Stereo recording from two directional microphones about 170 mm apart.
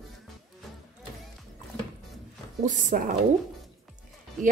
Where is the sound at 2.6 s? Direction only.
55° right (ahead or behind).